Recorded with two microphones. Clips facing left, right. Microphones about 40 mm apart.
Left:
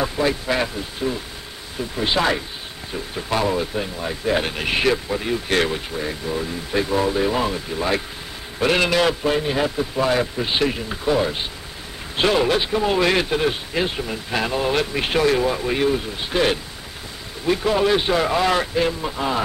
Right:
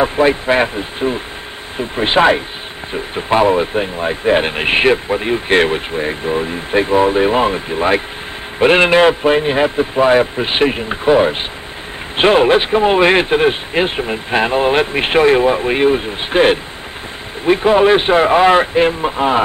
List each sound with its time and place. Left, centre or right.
0.0 s speech: right